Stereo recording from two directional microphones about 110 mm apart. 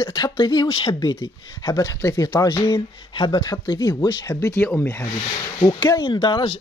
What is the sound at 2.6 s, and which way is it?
Speech, 50° left (ahead or behind).